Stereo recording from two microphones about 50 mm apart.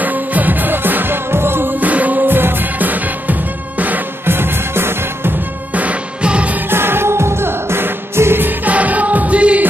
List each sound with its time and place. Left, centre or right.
0.0 s music: right
1.8 s music: right
4.3 s music: right
5.8 s music: right
6.7 s music: right
8.6 s music: right